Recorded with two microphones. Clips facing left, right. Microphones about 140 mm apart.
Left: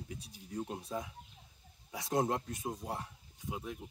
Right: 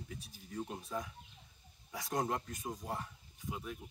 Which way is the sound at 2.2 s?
25° left (ahead or behind).